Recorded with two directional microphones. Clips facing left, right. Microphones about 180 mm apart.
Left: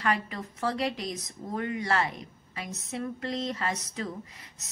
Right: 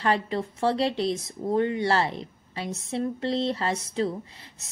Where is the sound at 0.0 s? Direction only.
30° right (ahead or behind).